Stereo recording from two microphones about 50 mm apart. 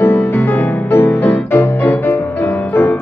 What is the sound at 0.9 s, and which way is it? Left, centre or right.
Music, left.